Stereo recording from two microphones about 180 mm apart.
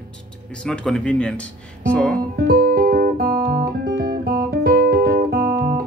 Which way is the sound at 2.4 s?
55° right (ahead or behind).